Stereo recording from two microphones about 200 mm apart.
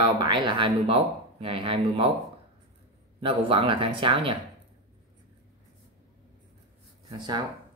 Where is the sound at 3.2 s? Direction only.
25° right (ahead or behind).